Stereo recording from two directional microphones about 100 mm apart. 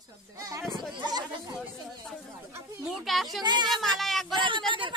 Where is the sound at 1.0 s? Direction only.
45° right (ahead or behind).